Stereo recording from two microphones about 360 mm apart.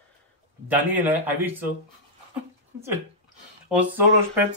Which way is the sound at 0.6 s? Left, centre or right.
Centre.